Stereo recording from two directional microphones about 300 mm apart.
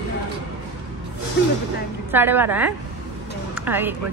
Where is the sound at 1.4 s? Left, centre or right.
Left.